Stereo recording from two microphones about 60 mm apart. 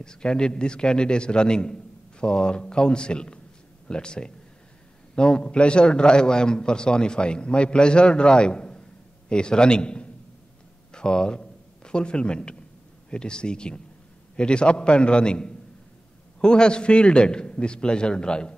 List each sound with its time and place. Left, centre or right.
0.0 s a man's voice: centre